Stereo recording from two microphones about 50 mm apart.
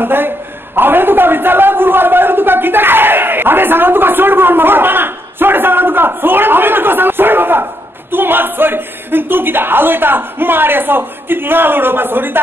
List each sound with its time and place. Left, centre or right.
0.0 s speech: right
0.7 s a sound: right
8.1 s speech: right